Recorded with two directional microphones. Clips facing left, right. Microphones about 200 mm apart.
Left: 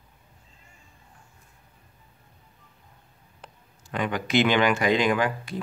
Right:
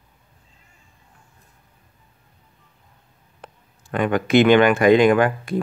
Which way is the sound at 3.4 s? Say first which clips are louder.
Right 5 dB; 55° right (ahead or behind).